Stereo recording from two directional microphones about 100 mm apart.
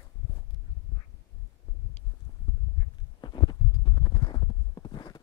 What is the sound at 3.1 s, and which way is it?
Clip-clop, 45° left (ahead or behind).